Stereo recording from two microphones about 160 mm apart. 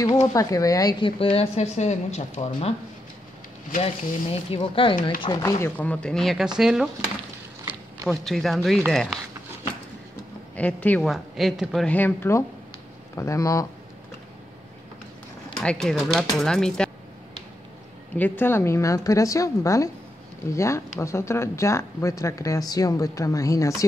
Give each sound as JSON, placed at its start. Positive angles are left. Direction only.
{"t": 0.3, "sound": "a woman's voice", "side_deg": 20}
{"t": 3.8, "sound": "a woman's voice", "side_deg": 35}
{"t": 5.2, "sound": "speech", "side_deg": 25}
{"t": 5.8, "sound": "speech", "side_deg": 5}
{"t": 8.1, "sound": "speech", "side_deg": 0}
{"t": 10.5, "sound": "a woman's voice", "side_deg": 10}
{"t": 15.6, "sound": "speech", "side_deg": 5}
{"t": 18.1, "sound": "speech", "side_deg": 10}